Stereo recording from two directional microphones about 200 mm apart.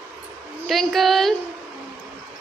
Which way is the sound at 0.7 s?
Centre (ahead or behind).